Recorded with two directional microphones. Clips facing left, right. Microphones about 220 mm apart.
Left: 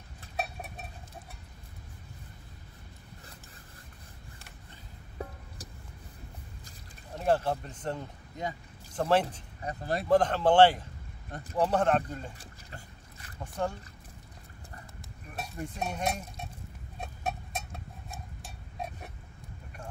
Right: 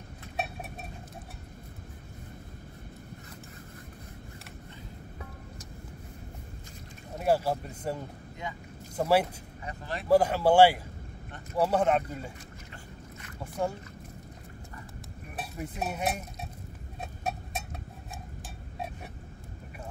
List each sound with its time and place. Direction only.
7.2 s speech: 10° right (ahead or behind)
9.6 s speech: 40° left (ahead or behind)
10.0 s speech: 10° right (ahead or behind)
13.4 s speech: 10° right (ahead or behind)
15.3 s stir: 5° right (ahead or behind)
17.0 s a sound: centre (ahead or behind)